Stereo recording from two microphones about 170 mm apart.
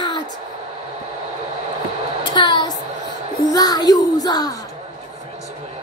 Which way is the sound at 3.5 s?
20° left (ahead or behind).